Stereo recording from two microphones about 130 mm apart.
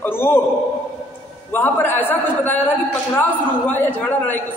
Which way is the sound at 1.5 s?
15° left (ahead or behind).